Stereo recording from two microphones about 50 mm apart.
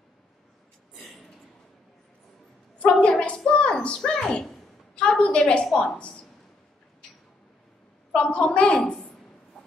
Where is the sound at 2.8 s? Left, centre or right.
Centre.